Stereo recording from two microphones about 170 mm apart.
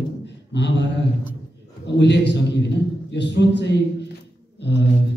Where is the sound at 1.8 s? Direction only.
90° left.